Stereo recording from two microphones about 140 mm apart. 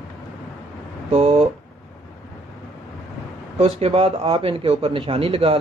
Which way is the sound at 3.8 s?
50° right (ahead or behind).